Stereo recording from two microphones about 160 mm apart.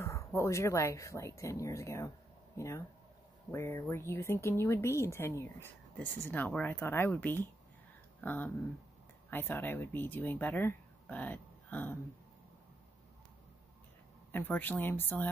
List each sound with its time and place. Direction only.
0.0 s speech: 20° left (ahead or behind)
14.3 s speech: 10° left (ahead or behind)